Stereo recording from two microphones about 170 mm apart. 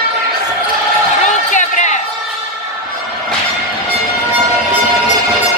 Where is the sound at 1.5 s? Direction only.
45° left (ahead or behind).